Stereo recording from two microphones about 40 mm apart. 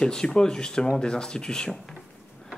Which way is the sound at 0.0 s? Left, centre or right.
Centre.